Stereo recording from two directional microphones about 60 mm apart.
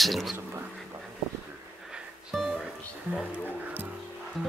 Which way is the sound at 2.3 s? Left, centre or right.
Centre.